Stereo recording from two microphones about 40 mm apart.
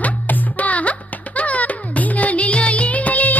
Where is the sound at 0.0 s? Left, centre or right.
Left.